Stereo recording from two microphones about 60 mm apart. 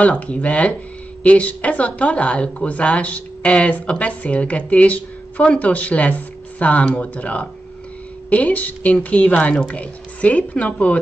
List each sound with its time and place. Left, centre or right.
0.0 s speech: left